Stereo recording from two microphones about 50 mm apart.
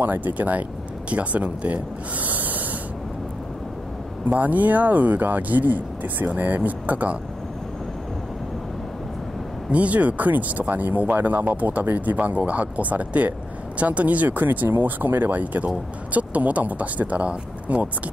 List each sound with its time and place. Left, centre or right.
0.0 s speech: right
4.3 s speech: right
9.7 s speech: right